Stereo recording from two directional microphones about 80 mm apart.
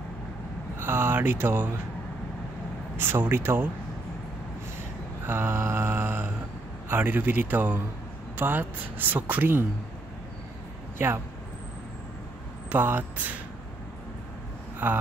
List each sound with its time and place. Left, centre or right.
0.7 s speech: right
3.0 s speech: right
5.2 s mantra: right
6.9 s speech: right
12.6 s speech: right
14.8 s speech: right